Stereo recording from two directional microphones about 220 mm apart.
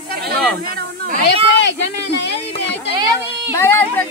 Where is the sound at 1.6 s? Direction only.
55° left (ahead or behind).